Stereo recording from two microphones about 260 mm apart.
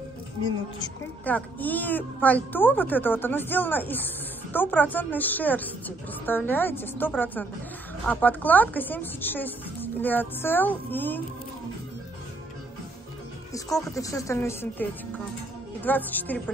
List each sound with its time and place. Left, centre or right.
0.7 s speech: centre
13.5 s speech: centre